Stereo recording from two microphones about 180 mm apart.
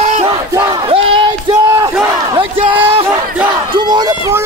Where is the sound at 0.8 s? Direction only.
30° right (ahead or behind).